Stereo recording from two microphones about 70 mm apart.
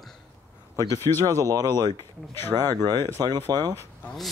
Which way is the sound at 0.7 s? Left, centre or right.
Right.